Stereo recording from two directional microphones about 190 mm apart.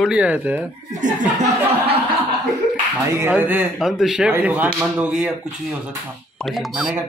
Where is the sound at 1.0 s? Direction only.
40° right (ahead or behind).